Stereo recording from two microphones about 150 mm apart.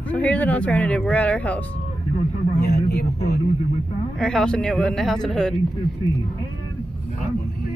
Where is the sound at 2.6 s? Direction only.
90° left.